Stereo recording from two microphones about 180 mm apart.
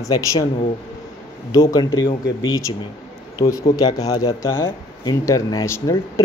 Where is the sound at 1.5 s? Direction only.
25° left (ahead or behind).